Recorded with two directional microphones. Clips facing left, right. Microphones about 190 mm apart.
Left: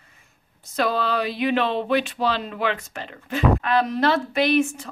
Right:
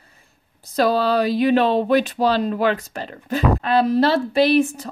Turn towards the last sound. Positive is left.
turn(degrees=-35)  # may be behind; listen again after turning